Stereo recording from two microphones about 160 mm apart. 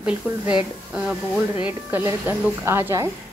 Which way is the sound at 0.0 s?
5° right (ahead or behind).